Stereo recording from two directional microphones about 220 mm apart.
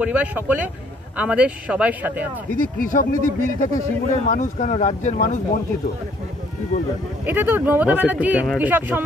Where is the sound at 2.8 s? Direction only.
40° left (ahead or behind).